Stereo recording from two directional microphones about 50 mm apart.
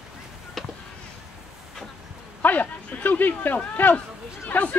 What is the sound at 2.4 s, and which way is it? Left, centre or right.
Speech, left.